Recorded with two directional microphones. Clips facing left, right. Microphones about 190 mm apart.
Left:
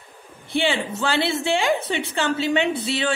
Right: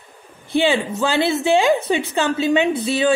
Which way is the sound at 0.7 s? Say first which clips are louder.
Right 4 dB; 15° right (ahead or behind).